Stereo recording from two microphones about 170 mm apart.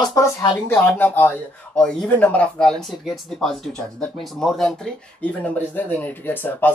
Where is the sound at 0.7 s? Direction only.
10° left (ahead or behind).